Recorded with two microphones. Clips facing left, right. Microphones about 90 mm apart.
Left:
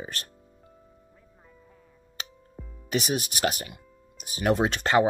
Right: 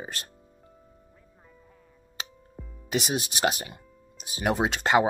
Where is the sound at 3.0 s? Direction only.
25° right (ahead or behind).